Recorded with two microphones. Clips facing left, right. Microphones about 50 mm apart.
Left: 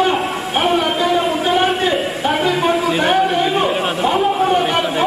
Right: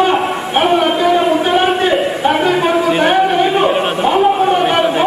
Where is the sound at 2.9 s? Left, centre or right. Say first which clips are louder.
Right 3 dB; centre.